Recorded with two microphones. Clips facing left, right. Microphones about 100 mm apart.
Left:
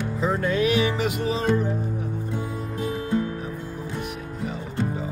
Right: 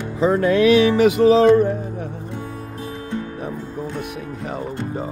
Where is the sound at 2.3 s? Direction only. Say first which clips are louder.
Left 1 dB; 20° left (ahead or behind).